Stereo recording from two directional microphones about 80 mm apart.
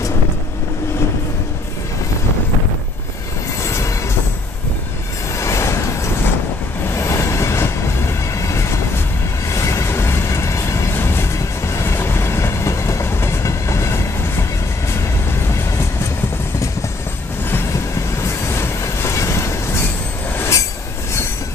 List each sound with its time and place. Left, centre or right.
5.4 s train: left
8.4 s vehicle: left
9.5 s train: left
17.5 s train: left